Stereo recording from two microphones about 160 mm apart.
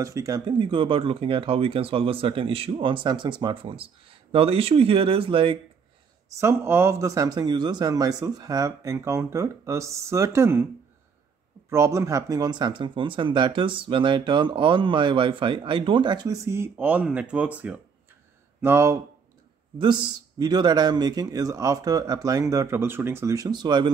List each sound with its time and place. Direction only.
0.0 s speech: 20° right (ahead or behind)
6.3 s speech: 15° right (ahead or behind)
11.7 s speech: 15° right (ahead or behind)
19.8 s speech: 30° right (ahead or behind)